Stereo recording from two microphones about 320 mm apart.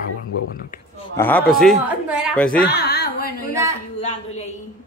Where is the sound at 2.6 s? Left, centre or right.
Left.